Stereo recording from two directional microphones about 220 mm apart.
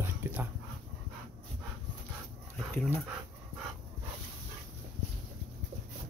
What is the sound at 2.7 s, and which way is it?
Speech, 10° left (ahead or behind).